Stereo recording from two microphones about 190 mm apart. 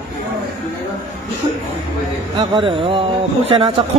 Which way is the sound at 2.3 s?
25° right (ahead or behind).